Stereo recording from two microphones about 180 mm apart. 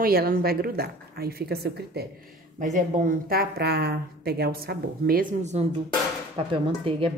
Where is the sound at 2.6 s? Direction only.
45° right (ahead or behind).